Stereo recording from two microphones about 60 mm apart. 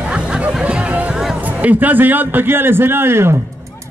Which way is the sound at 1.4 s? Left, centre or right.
Right.